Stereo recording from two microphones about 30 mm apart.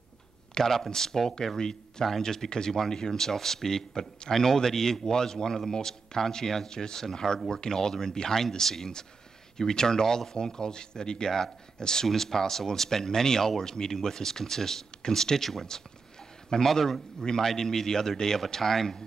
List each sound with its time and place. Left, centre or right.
0.6 s speech: centre
16.6 s speech: centre
17.2 s speech: centre